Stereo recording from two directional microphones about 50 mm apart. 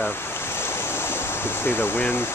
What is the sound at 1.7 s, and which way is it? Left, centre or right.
Speech, left.